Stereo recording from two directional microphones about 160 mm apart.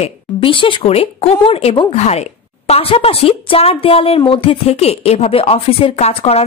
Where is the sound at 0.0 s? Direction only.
35° left (ahead or behind).